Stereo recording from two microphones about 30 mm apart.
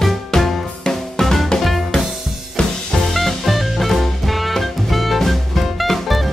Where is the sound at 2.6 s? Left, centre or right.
Left.